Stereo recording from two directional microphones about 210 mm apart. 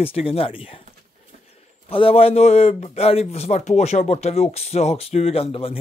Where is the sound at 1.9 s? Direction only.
25° left (ahead or behind).